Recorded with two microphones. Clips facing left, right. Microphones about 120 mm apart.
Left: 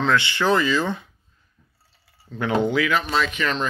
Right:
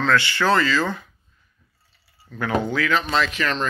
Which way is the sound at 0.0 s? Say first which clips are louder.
Right 1 dB; 20° left (ahead or behind).